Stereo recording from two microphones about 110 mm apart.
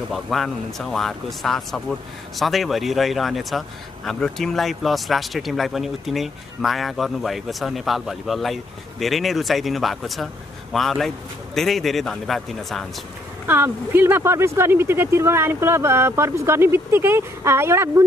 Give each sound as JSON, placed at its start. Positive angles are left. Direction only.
{"t": 0.1, "sound": "speech", "side_deg": 0}
{"t": 13.5, "sound": "speech", "side_deg": -20}